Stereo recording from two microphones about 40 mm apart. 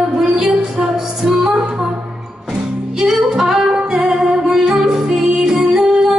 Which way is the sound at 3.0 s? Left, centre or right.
Centre.